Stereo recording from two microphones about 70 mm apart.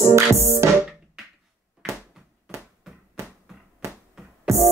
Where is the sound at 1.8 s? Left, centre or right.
Centre.